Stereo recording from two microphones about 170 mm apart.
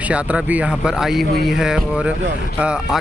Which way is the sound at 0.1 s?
10° right (ahead or behind).